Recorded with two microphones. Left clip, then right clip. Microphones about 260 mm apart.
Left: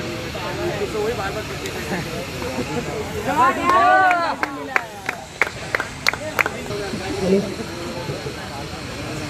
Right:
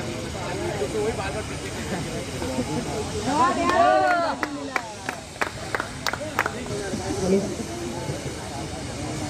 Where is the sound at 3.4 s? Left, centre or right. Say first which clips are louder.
Left 4 dB; right.